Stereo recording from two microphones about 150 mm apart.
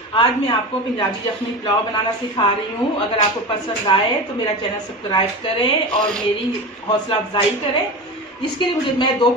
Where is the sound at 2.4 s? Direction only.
30° left (ahead or behind).